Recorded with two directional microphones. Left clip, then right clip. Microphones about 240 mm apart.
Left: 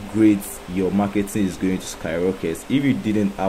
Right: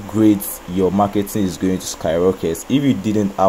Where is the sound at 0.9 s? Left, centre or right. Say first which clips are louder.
Right 5 dB; centre.